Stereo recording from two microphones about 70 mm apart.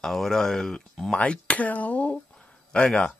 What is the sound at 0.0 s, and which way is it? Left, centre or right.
Speech, centre.